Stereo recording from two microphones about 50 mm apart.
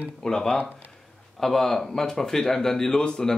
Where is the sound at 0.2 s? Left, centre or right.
Centre.